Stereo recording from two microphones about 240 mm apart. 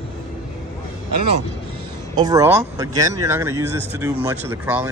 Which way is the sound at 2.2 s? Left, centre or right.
Centre.